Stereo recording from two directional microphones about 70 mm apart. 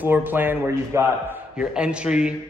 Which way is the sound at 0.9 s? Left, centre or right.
Right.